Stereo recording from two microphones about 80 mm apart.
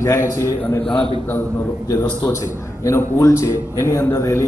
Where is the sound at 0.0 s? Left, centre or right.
Left.